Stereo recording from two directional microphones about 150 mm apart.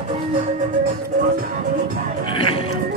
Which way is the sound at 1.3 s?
65° right (ahead or behind).